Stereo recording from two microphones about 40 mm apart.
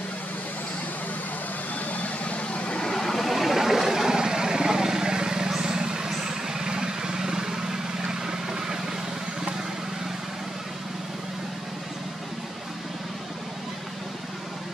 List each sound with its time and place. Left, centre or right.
2.2 s vehicle: left
2.9 s vehicle: centre